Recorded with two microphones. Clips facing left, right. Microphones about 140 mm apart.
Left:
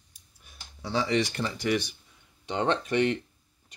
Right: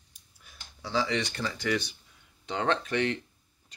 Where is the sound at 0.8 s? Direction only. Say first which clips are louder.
Left 3 dB; 25° left (ahead or behind).